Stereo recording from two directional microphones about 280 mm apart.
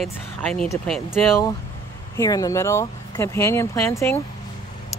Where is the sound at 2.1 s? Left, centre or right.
Centre.